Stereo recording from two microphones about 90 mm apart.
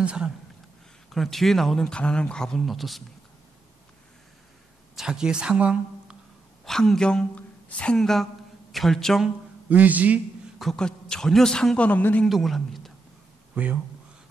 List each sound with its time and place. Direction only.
0.0 s speech: 10° right (ahead or behind)
1.1 s speech: 5° left (ahead or behind)
4.9 s speech: 5° right (ahead or behind)
6.6 s speech: 5° left (ahead or behind)
9.7 s a man's voice: 15° right (ahead or behind)
10.6 s a man's voice: 5° left (ahead or behind)
12.3 s speech: centre (ahead or behind)
13.5 s speech: 20° right (ahead or behind)